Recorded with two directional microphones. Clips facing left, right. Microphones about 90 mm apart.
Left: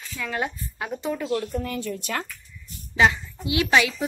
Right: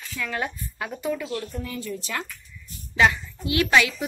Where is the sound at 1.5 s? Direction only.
50° left (ahead or behind).